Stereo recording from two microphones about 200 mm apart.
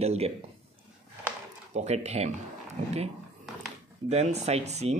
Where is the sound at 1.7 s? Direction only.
35° right (ahead or behind).